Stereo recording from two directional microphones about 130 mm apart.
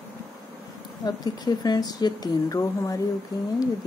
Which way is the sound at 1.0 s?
30° left (ahead or behind).